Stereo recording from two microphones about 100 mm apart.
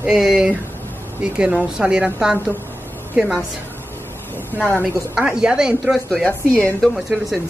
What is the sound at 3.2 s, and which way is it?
Speech, 10° right (ahead or behind).